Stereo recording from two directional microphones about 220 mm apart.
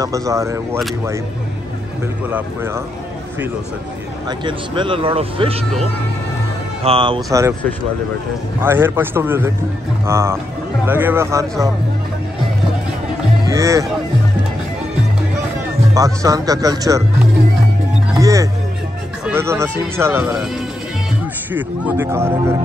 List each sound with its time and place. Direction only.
0.0 s speech: 15° right (ahead or behind)
2.2 s speech: 10° right (ahead or behind)
4.3 s speech: 20° right (ahead or behind)
6.8 s speech: 25° right (ahead or behind)
7.2 s speech: 15° right (ahead or behind)
8.5 s speech: 10° right (ahead or behind)
13.5 s speech: 15° right (ahead or behind)
15.9 s speech: 15° right (ahead or behind)
18.1 s music: 15° right (ahead or behind)
19.2 s speech: 10° right (ahead or behind)
21.5 s speech: 10° right (ahead or behind)